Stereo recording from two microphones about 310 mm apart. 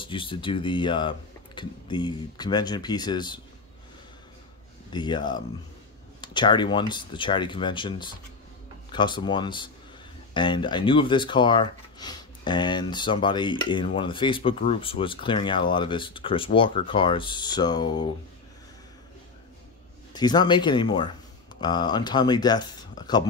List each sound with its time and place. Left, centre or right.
0.0 s speech: centre
4.9 s speech: centre
20.1 s speech: centre